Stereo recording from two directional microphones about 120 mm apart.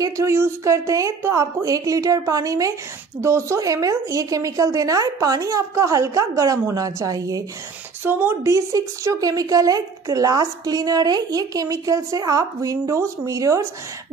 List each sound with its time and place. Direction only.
0.0 s a woman's voice: 25° right (ahead or behind)
8.0 s a woman's voice: 20° right (ahead or behind)